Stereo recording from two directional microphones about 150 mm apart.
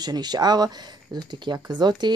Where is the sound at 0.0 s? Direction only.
25° right (ahead or behind).